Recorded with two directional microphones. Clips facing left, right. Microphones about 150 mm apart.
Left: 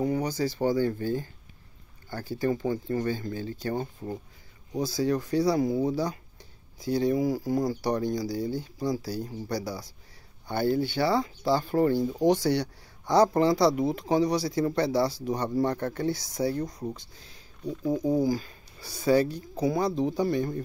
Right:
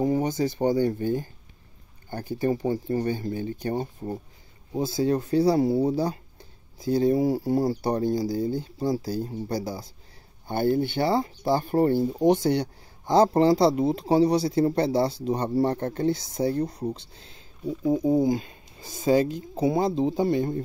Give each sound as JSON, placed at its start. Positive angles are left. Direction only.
{"t": 0.0, "sound": "speech", "side_deg": -25}
{"t": 4.7, "sound": "speech", "side_deg": -25}